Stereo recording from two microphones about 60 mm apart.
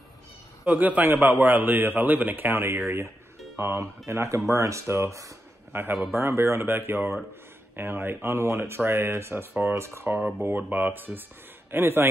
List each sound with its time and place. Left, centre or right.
0.7 s a man's voice: right
4.0 s speech: right
5.7 s a man's voice: right
9.8 s speech: right
10.1 s a man's voice: right